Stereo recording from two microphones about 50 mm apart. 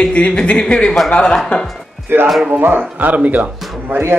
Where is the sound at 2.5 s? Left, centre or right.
Right.